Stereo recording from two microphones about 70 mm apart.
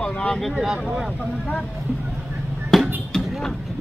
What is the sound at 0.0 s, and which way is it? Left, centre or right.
Speech, centre.